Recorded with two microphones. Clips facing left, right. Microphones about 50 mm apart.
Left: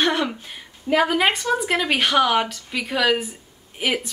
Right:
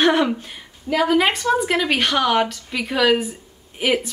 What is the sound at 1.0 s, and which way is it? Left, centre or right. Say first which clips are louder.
A woman's voice: right 2 dB; centre.